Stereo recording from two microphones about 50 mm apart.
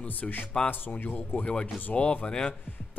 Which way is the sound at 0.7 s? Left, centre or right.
Left.